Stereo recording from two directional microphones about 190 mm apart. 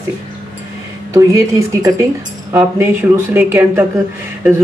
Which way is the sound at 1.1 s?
15° right (ahead or behind).